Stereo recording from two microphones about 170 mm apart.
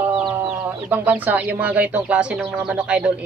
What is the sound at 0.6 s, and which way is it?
Speech, 10° right (ahead or behind).